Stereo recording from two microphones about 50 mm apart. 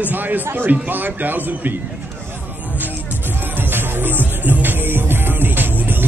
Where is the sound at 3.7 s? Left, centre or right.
Right.